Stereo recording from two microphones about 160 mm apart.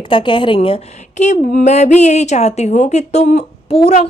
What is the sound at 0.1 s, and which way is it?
Speech, 30° left (ahead or behind).